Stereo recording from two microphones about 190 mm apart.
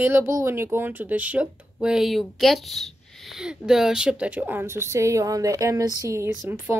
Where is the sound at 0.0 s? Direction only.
15° right (ahead or behind).